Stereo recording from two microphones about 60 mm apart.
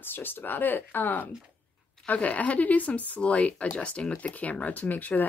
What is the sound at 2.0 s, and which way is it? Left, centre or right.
Speech, left.